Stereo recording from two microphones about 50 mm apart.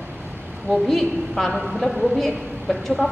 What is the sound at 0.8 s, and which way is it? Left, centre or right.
A woman's voice, centre.